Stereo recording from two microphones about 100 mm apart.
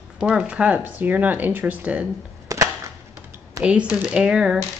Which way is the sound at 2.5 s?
30° right (ahead or behind).